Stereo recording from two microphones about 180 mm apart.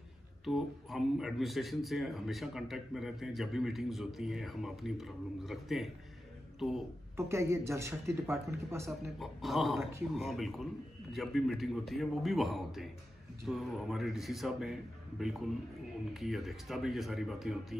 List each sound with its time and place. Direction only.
0.5 s speech: centre (ahead or behind)
7.2 s speech: 15° right (ahead or behind)
8.8 s speech: centre (ahead or behind)